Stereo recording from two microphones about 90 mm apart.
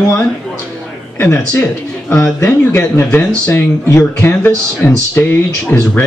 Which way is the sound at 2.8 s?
20° left (ahead or behind).